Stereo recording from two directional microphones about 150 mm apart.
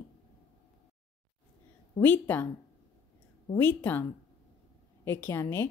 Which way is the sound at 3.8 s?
15° left (ahead or behind).